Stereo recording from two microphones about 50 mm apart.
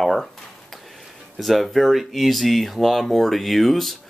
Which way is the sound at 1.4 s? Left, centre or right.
Centre.